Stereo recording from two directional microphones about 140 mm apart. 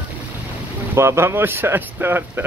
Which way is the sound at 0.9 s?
20° right (ahead or behind).